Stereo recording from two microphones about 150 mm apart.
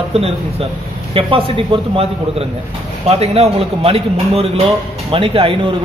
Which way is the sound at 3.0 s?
45° right (ahead or behind).